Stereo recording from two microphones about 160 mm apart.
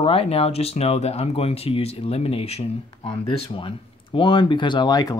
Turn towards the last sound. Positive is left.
turn(degrees=25)  # may be behind; listen again after turning